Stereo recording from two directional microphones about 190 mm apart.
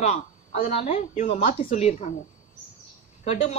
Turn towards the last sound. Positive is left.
turn(degrees=35)  # may be behind; listen again after turning